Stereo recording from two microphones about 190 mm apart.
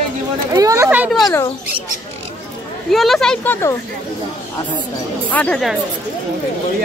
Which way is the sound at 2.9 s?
Centre (ahead or behind).